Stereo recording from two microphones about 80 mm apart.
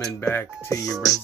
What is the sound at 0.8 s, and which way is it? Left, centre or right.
Speech, centre.